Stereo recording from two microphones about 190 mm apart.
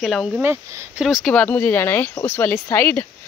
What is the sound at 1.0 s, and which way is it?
Speech, centre (ahead or behind).